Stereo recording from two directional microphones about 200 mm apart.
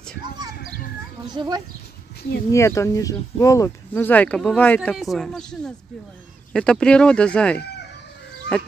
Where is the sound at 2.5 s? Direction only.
15° left (ahead or behind).